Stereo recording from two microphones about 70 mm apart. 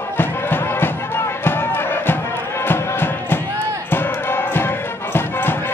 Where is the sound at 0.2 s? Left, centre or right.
Left.